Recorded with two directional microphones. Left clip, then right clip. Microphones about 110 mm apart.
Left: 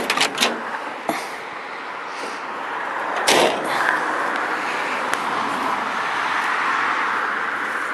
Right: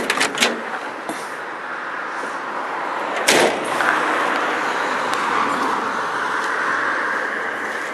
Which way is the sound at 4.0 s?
50° right (ahead or behind).